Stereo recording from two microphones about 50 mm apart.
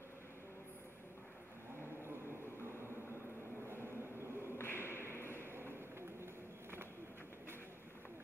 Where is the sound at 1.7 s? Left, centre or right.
Right.